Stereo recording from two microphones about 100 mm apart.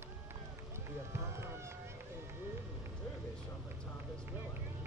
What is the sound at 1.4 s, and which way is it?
Speech, 25° right (ahead or behind).